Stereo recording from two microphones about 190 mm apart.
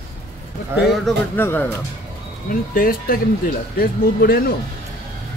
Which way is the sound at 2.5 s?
50° left (ahead or behind).